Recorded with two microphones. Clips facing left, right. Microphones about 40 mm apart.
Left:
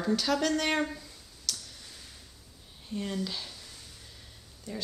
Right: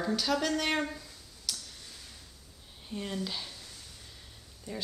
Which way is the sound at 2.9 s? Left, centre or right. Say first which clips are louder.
Left 2 dB; centre.